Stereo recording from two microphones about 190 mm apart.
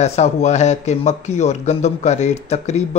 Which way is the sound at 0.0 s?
35° left (ahead or behind).